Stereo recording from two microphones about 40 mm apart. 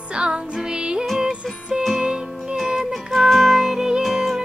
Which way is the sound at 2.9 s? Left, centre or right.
Centre.